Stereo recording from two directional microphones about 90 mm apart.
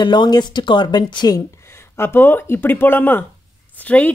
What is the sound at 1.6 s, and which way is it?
A woman's voice, 30° left (ahead or behind).